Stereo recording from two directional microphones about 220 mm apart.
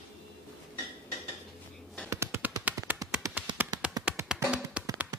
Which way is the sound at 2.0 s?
10° right (ahead or behind).